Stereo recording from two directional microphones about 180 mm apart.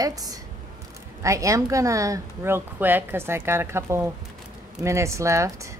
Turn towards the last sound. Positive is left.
turn(degrees=-15)  # may be behind; listen again after turning